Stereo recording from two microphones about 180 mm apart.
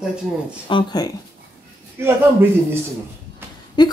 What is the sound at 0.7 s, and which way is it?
Speech, 25° left (ahead or behind).